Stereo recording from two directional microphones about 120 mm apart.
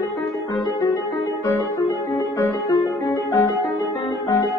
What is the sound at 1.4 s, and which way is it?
Music, 30° left (ahead or behind).